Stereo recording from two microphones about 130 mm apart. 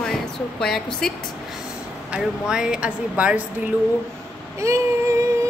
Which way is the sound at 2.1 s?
5° right (ahead or behind).